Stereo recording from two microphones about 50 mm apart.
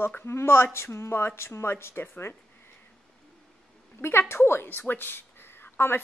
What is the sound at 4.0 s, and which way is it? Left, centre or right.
Speech, left.